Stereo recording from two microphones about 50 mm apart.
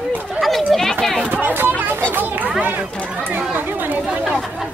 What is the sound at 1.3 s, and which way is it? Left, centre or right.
Speech, right.